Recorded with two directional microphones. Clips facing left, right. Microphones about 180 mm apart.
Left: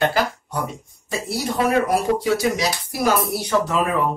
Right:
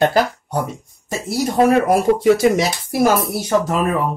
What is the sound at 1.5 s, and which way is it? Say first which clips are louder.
Speech: right 5 dB; 50° right (ahead or behind).